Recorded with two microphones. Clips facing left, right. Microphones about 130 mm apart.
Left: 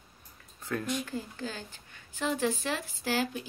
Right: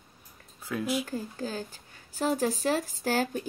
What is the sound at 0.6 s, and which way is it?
Speech, 5° right (ahead or behind).